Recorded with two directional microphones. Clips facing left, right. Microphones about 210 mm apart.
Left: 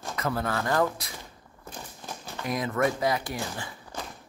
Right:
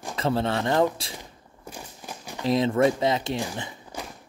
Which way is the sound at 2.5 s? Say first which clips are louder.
Right 6 dB; 25° right (ahead or behind).